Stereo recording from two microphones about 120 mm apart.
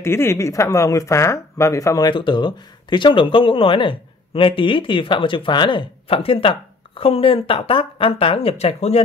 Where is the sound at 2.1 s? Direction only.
40° left (ahead or behind).